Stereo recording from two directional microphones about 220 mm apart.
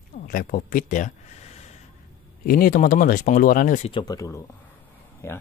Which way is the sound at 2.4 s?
40° left (ahead or behind).